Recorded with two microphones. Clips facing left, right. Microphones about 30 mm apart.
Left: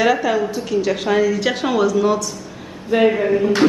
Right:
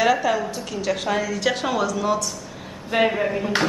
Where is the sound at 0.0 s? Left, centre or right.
Centre.